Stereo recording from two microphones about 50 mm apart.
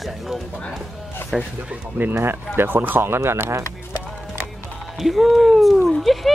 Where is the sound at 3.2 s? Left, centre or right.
Right.